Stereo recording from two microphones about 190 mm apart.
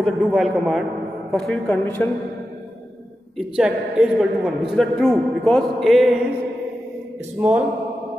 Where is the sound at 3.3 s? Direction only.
5° right (ahead or behind).